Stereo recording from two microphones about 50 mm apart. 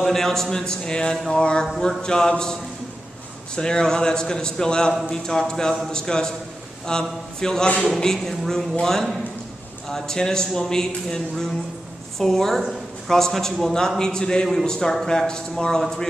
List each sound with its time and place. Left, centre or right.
0.0 s a man's voice: centre
1.3 s mantra: centre
1.8 s a man's voice: centre
3.5 s a man's voice: centre